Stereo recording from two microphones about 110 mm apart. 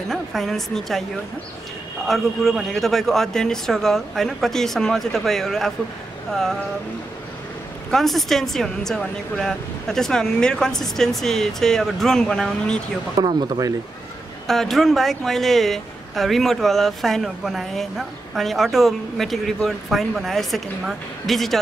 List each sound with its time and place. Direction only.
0.1 s speech: centre (ahead or behind)
2.0 s speech: centre (ahead or behind)
7.9 s speech: centre (ahead or behind)
13.1 s speech: 40° right (ahead or behind)
14.5 s speech: centre (ahead or behind)